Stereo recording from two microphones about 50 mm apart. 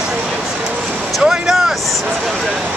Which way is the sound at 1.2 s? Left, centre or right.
Centre.